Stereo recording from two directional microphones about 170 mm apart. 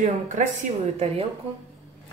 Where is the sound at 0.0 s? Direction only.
45° right (ahead or behind).